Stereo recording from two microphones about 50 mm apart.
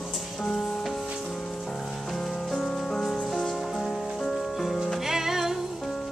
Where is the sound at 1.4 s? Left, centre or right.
Centre.